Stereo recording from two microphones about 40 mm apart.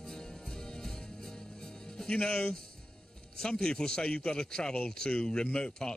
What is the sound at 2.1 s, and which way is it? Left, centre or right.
A man's voice, left.